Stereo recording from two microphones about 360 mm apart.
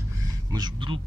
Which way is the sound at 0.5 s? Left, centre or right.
Centre.